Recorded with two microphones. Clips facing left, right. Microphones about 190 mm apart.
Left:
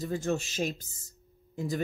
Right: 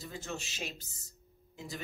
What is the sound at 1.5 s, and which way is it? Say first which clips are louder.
Speech: left 11 dB; 50° left (ahead or behind).